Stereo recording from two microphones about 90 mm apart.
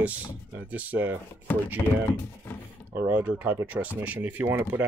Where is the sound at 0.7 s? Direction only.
15° right (ahead or behind).